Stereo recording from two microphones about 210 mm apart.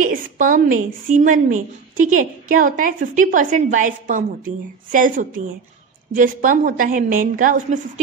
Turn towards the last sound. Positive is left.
turn(degrees=-40)  # may be behind; listen again after turning